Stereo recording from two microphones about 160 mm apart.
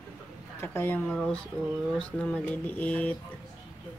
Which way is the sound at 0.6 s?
15° left (ahead or behind).